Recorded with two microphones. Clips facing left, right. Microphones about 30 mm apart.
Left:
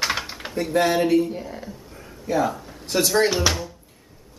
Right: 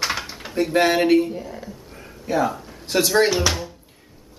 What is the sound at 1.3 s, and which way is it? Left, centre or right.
Speech, centre.